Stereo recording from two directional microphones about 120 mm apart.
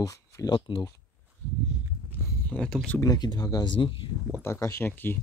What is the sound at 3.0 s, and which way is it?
Speech, 35° left (ahead or behind).